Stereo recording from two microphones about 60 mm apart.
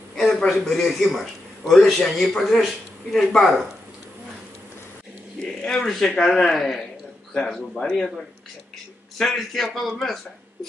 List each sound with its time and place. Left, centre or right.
0.1 s a sound: centre
0.5 s a man's voice: centre
5.4 s speech: centre
7.3 s speech: centre
9.2 s a man's voice: centre